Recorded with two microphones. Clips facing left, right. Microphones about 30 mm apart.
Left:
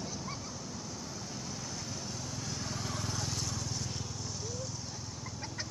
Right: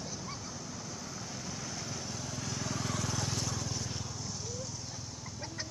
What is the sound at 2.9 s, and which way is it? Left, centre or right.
Vehicle, right.